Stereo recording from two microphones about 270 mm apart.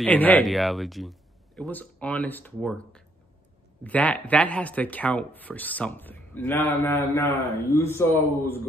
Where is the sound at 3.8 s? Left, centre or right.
Centre.